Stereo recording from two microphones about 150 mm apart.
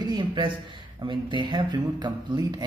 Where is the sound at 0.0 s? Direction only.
30° right (ahead or behind).